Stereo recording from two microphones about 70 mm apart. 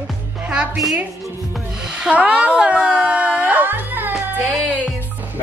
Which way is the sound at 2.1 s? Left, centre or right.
Centre.